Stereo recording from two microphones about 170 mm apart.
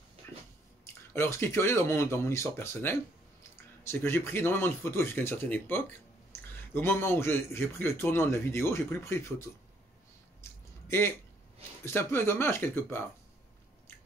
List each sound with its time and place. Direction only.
1.1 s a man's voice: 15° left (ahead or behind)
10.4 s a sound: 15° left (ahead or behind)
10.9 s a man's voice: 15° left (ahead or behind)